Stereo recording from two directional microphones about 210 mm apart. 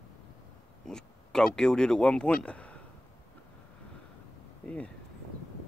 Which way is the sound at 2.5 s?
5° left (ahead or behind).